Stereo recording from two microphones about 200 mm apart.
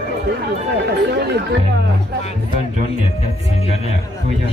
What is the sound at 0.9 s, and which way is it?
Speech, 60° right (ahead or behind).